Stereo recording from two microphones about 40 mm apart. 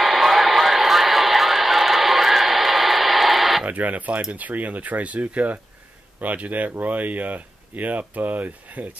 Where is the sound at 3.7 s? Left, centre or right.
Right.